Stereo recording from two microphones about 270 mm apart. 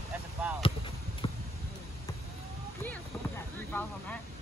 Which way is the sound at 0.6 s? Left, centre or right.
Centre.